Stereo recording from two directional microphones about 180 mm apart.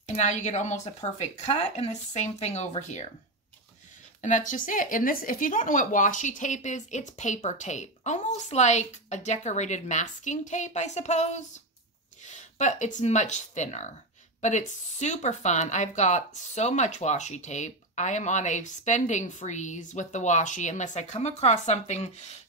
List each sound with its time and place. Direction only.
0.1 s speech: 40° left (ahead or behind)
4.2 s speech: 45° left (ahead or behind)